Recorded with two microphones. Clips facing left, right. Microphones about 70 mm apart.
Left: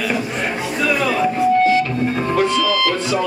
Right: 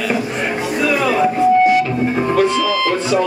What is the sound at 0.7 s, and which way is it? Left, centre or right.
Music, centre.